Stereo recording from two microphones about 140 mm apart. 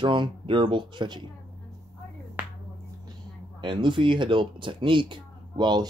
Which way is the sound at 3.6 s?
35° right (ahead or behind).